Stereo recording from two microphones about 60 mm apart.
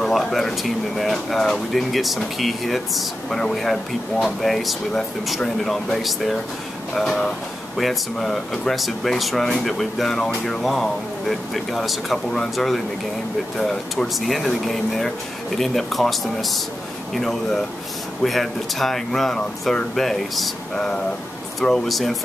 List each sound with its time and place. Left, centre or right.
0.0 s speech: centre